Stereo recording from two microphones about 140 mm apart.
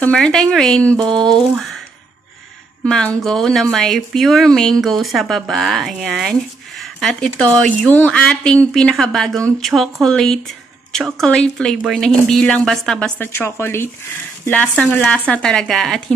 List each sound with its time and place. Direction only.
0.0 s speech: 5° left (ahead or behind)
0.9 s a sound: 35° right (ahead or behind)
1.2 s speech: 5° left (ahead or behind)
2.8 s speech: 5° left (ahead or behind)
13.3 s a woman's voice: 15° left (ahead or behind); by 16.0 s centre (ahead or behind)